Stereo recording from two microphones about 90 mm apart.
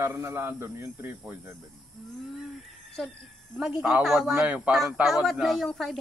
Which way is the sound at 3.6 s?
10° right (ahead or behind).